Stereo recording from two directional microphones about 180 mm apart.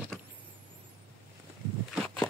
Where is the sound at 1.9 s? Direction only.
5° left (ahead or behind).